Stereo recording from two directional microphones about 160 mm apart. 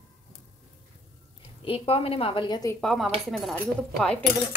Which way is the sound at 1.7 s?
35° left (ahead or behind).